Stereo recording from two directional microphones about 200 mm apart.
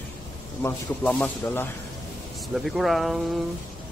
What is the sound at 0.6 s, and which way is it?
Speech, 10° left (ahead or behind).